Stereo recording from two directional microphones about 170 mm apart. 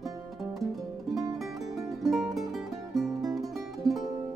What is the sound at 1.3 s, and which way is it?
Music, centre (ahead or behind).